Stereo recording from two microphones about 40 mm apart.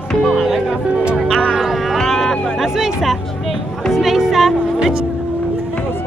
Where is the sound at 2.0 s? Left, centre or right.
Centre.